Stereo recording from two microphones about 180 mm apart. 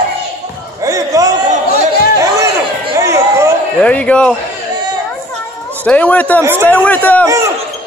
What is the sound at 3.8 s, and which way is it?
Speech, 5° left (ahead or behind).